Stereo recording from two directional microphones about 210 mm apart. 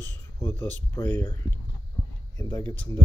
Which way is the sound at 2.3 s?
15° left (ahead or behind).